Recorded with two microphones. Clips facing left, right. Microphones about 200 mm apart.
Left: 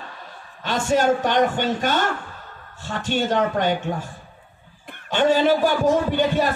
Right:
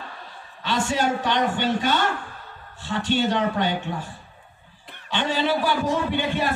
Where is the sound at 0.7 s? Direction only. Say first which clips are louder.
Left 4 dB; 50° left (ahead or behind).